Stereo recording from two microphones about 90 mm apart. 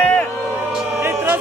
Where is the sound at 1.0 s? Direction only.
25° right (ahead or behind).